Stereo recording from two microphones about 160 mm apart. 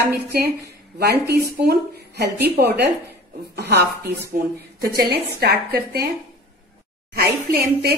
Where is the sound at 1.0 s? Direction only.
90° right.